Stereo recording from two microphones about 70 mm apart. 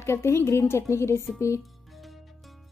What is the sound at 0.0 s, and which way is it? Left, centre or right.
Speech, left.